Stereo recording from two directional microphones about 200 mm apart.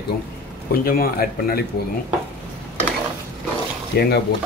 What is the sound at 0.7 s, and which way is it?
Speech, 50° left (ahead or behind).